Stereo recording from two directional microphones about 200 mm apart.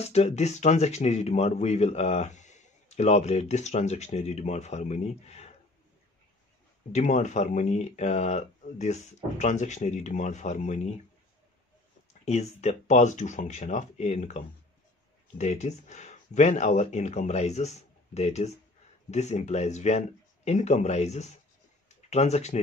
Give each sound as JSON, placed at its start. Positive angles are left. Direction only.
{"t": 0.0, "sound": "speech", "side_deg": 30}
{"t": 6.9, "sound": "speech", "side_deg": 35}
{"t": 12.1, "sound": "speech", "side_deg": 35}
{"t": 21.8, "sound": "a sound", "side_deg": 35}